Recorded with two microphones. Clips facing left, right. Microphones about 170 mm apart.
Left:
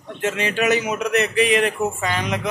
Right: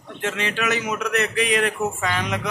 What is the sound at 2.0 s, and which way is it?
Speech, centre (ahead or behind).